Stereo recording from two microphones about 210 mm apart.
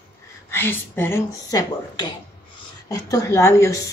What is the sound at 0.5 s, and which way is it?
A woman's voice, 10° left (ahead or behind).